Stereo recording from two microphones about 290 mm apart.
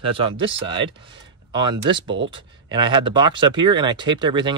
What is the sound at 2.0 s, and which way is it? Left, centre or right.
Speech, right.